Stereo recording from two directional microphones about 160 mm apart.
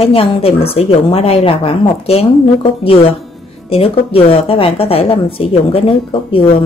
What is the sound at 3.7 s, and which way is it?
Speech, 35° left (ahead or behind).